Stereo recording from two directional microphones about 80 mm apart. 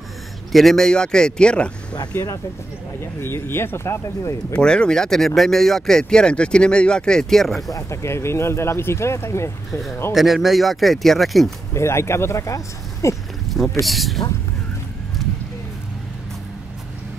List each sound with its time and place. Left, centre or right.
0.5 s speech: centre
3.0 s speech: left
4.6 s speech: centre
7.7 s speech: left
9.7 s speech: centre
11.7 s speech: left
13.8 s speech: centre